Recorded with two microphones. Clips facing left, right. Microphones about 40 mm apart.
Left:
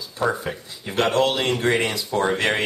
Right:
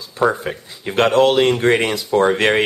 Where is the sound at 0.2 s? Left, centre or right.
Centre.